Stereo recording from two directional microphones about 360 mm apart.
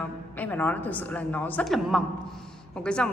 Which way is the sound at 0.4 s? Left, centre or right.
Centre.